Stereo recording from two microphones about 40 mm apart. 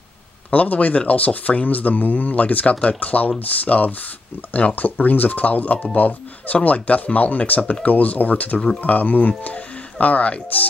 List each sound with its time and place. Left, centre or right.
0.5 s speech: left